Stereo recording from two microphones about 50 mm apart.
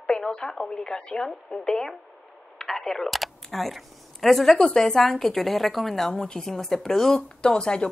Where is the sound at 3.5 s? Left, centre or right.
Centre.